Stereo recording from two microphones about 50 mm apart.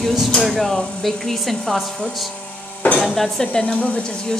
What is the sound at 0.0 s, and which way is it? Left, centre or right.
Speech, centre.